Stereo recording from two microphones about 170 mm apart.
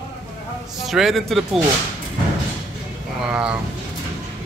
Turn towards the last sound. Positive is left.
turn(degrees=-5)  # may be behind; listen again after turning